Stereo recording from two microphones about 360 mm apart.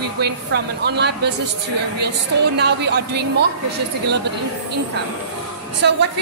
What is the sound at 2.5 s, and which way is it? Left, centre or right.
Speech, right.